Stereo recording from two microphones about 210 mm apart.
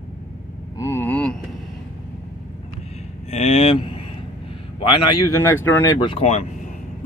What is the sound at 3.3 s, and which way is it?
Speech, 30° left (ahead or behind).